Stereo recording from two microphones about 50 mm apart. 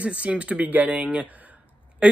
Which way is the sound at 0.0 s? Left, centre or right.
Right.